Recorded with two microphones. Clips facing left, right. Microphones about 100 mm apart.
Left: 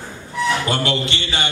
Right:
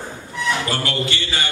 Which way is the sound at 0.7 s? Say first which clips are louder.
Left 2 dB; 25° left (ahead or behind).